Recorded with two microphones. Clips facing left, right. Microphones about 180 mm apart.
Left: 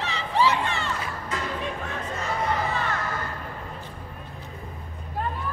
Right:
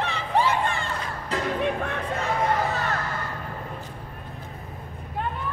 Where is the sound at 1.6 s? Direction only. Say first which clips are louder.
Right 5 dB; 60° right (ahead or behind).